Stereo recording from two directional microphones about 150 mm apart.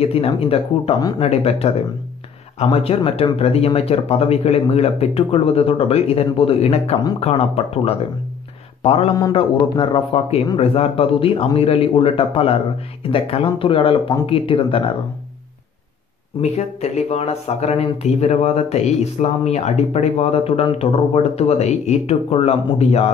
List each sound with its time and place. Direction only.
0.0 s speech: 40° left (ahead or behind)
9.1 s speech: 30° left (ahead or behind)
16.3 s speech: 45° left (ahead or behind)